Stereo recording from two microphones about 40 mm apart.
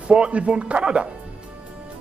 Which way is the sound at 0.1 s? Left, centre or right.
Right.